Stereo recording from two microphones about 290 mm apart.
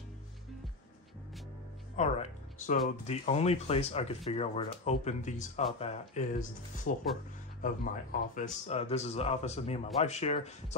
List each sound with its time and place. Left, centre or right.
2.0 s speech: left